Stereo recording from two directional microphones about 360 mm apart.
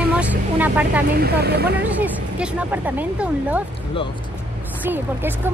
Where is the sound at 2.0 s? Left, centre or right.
Centre.